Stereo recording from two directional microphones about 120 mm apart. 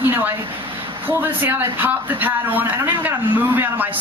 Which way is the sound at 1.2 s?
15° right (ahead or behind).